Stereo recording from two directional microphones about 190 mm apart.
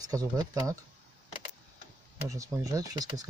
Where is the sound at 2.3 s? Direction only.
15° right (ahead or behind).